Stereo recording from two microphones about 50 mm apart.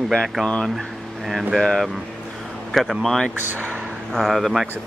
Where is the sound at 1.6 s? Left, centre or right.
Centre.